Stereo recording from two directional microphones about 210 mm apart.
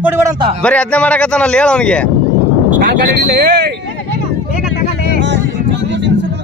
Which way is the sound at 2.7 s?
45° right (ahead or behind).